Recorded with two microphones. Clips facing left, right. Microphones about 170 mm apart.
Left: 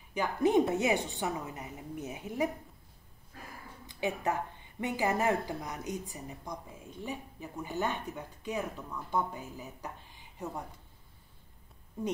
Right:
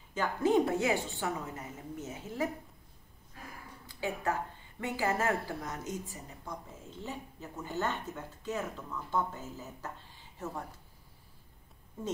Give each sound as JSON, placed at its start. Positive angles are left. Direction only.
{"t": 0.1, "sound": "speech", "side_deg": 15}
{"t": 3.8, "sound": "speech", "side_deg": 20}